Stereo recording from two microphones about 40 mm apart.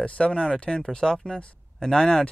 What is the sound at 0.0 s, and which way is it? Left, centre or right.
Speech, left.